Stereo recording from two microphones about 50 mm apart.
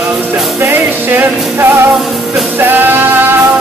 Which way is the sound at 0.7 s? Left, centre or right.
Right.